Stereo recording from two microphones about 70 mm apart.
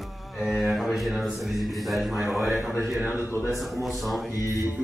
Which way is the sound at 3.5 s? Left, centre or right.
Centre.